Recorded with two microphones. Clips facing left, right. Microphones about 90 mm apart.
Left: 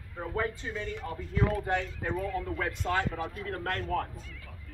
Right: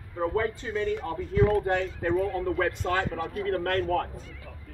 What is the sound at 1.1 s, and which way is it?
Speech, 50° right (ahead or behind).